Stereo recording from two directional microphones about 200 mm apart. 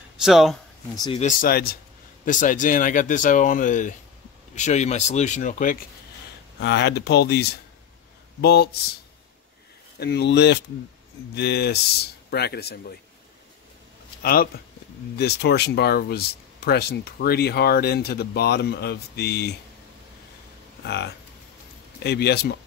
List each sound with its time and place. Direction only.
0.2 s speech: centre (ahead or behind)
1.2 s speech: 45° left (ahead or behind)
6.6 s speech: 60° left (ahead or behind)
9.9 s speech: 55° left (ahead or behind)
14.2 s speech: 50° left (ahead or behind)
20.8 s speech: 55° left (ahead or behind)